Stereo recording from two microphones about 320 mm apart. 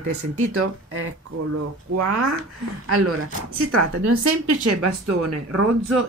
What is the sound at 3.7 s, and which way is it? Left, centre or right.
A woman's voice, right.